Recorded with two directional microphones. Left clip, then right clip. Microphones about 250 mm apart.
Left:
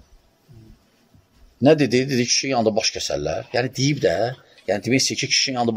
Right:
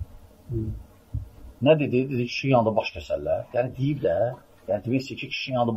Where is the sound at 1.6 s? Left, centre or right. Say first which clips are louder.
Left 4 dB; left.